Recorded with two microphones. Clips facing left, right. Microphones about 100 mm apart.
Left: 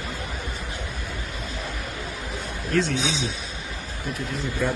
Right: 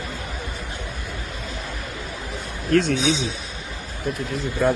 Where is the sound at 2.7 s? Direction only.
60° right (ahead or behind).